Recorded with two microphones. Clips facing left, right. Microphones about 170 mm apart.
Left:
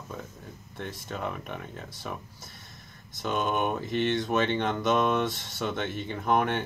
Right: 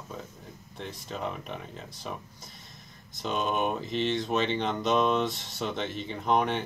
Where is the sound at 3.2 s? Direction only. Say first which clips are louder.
Left 1 dB; centre (ahead or behind).